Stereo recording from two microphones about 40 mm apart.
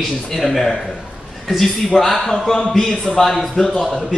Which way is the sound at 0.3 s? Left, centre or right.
Centre.